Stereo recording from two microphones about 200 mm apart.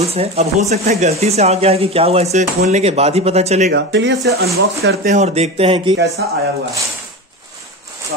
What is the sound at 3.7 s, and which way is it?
Speech, 60° right (ahead or behind).